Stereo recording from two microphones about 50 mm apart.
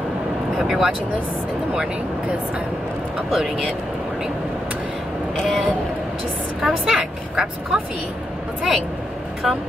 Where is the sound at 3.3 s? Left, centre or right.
Centre.